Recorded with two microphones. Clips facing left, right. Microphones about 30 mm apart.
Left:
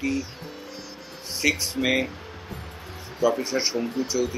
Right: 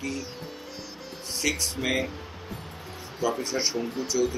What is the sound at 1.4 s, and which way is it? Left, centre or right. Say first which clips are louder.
Speech: left 5 dB; centre.